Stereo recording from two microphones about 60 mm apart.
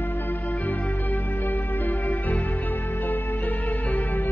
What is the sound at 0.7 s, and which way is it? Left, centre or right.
Music, left.